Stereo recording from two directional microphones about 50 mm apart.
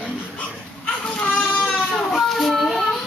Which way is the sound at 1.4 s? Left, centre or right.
Left.